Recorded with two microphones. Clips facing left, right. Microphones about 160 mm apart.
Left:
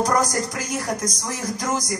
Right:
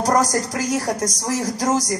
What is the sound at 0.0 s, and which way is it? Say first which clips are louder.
Speech: right 2 dB; 40° right (ahead or behind).